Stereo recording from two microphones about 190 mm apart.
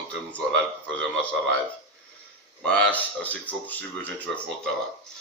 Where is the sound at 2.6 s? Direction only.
5° left (ahead or behind).